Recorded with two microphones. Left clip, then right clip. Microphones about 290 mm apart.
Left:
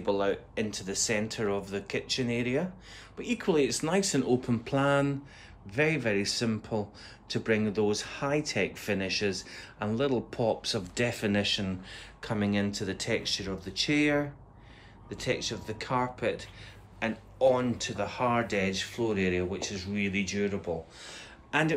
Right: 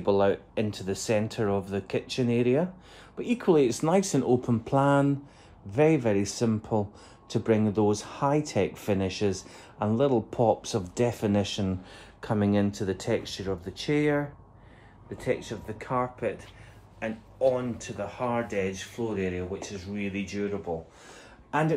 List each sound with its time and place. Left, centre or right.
0.0 s speech: right
15.6 s speech: centre